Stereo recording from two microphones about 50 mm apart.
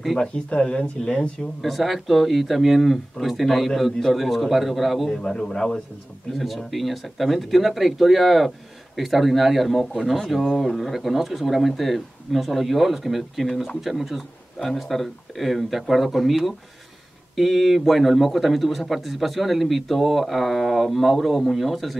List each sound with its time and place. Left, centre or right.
0.3 s speech: left
1.4 s speech: centre
5.1 s a man's voice: centre